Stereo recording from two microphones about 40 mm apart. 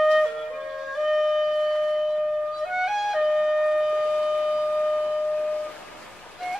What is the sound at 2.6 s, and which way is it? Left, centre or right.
Music, centre.